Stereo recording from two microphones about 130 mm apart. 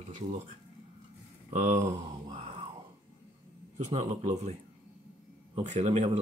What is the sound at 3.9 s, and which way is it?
Speech, 60° right (ahead or behind).